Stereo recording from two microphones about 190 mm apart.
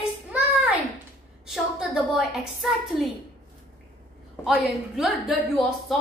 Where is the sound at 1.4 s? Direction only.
5° right (ahead or behind).